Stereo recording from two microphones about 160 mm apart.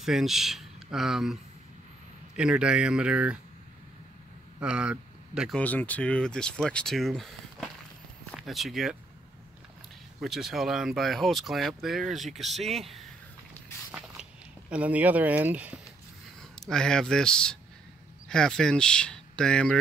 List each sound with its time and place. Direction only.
0.0 s speech: centre (ahead or behind)
4.6 s speech: 5° right (ahead or behind)
5.6 s speech: 10° left (ahead or behind)
10.2 s speech: centre (ahead or behind)
14.7 s speech: 10° right (ahead or behind)
16.5 s speech: centre (ahead or behind)